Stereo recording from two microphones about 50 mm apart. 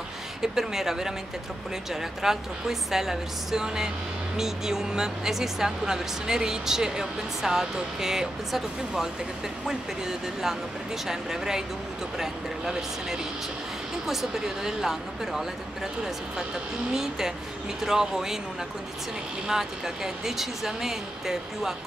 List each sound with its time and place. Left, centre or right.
0.4 s speech: centre
2.2 s speech: centre
16.9 s speech: centre
19.4 s speech: centre